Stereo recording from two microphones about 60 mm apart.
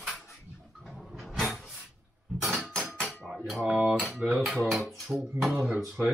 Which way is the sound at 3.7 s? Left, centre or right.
Right.